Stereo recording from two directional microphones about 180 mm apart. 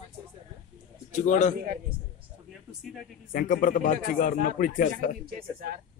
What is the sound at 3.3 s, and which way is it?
A man's voice, 50° left (ahead or behind).